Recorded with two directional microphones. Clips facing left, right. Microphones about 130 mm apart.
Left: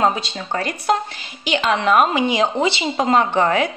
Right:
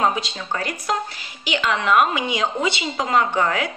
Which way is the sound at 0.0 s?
30° left (ahead or behind).